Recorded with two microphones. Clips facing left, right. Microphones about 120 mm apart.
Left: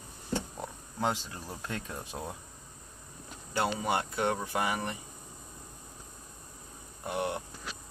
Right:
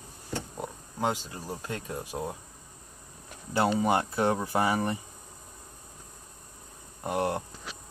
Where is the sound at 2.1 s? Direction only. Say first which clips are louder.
Right 6 dB; 20° right (ahead or behind).